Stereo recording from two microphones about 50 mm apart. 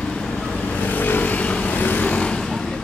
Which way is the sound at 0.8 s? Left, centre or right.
Left.